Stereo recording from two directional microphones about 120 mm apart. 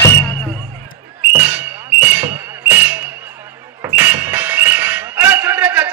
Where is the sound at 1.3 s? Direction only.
15° right (ahead or behind).